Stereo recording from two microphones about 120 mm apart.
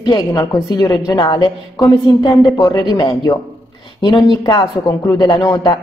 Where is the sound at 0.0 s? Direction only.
35° left (ahead or behind).